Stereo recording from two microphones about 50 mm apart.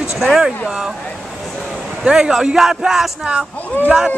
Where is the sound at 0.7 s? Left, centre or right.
Centre.